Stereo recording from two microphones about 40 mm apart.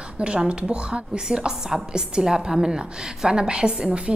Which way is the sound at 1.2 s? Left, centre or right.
Centre.